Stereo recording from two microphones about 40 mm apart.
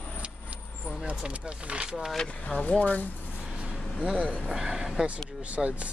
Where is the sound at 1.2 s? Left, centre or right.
Right.